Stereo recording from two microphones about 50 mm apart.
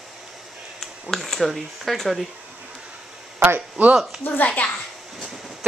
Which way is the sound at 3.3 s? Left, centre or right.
Right.